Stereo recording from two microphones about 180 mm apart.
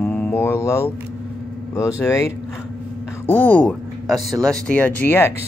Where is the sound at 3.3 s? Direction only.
10° left (ahead or behind).